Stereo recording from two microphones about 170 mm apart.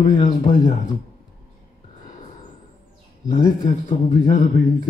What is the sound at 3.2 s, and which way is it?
Speech, 20° left (ahead or behind).